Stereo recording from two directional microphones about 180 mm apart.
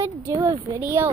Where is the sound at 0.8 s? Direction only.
15° right (ahead or behind).